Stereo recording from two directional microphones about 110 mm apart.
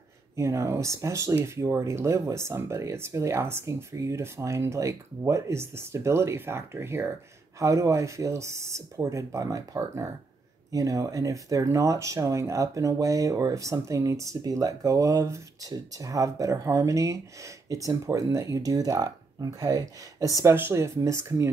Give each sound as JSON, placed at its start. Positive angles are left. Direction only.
{"t": 0.4, "sound": "speech", "side_deg": -25}